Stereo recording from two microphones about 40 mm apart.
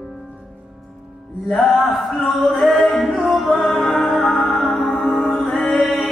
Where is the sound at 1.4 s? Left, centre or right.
Centre.